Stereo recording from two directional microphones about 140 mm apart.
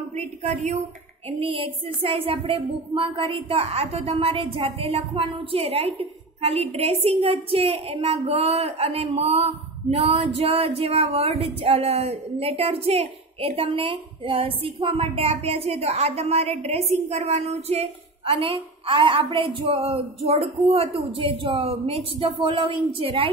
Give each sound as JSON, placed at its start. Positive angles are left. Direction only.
{"t": 0.1, "sound": "a woman's voice", "side_deg": -50}
{"t": 1.4, "sound": "a woman's voice", "side_deg": -40}